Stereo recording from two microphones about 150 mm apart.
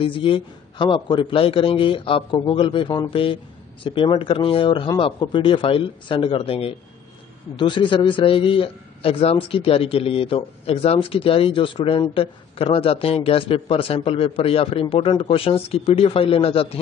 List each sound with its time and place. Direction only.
0.0 s a man's voice: 35° left (ahead or behind)